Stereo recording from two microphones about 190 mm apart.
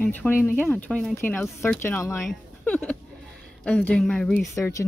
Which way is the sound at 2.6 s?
5° left (ahead or behind).